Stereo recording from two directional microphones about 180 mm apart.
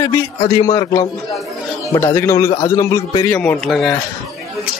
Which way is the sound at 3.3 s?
10° left (ahead or behind).